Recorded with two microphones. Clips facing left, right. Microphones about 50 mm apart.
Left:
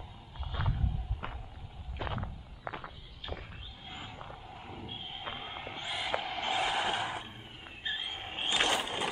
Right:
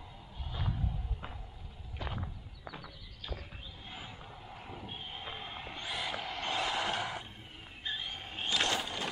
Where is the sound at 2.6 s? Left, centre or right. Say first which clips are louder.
Left 6 dB; left.